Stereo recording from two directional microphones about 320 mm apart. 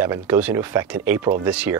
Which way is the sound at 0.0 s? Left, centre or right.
Centre.